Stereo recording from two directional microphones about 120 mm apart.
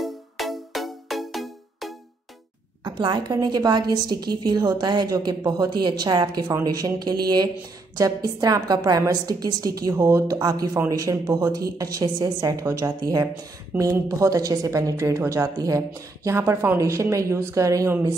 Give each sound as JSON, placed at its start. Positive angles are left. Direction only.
{"t": 0.0, "sound": "music", "side_deg": 0}
{"t": 2.8, "sound": "a woman's voice", "side_deg": -35}